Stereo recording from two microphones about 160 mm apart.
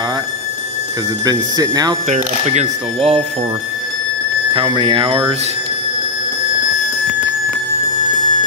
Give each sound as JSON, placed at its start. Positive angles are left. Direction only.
{"t": 1.2, "sound": "speech", "side_deg": -25}
{"t": 2.0, "sound": "speech", "side_deg": -40}
{"t": 4.6, "sound": "speech", "side_deg": -30}